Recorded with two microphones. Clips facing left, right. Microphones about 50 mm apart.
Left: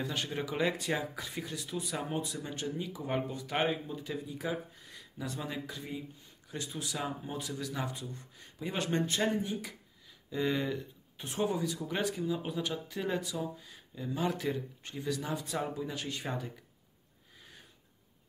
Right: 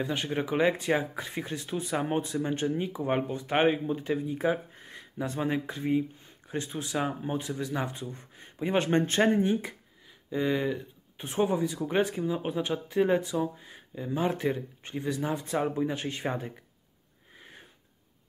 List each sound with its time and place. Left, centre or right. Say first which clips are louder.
0.0 s speech: right 5 dB; right
10.4 s speech: right 4 dB; centre
11.1 s speech: right 5 dB; right
17.4 s sniff: right 5 dB; right